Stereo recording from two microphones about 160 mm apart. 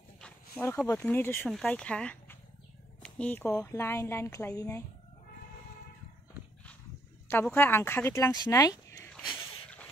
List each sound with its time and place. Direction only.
0.2 s speech: 10° left (ahead or behind)
7.4 s speech: 10° left (ahead or behind)
9.1 s a sound: centre (ahead or behind)